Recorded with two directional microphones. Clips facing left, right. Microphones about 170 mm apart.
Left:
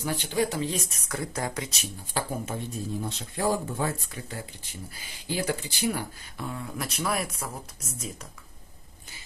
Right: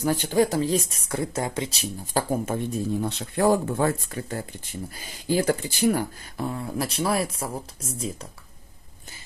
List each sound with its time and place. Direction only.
0.0 s speech: 45° right (ahead or behind)
2.4 s speech: 60° right (ahead or behind); by 8.3 s 30° right (ahead or behind)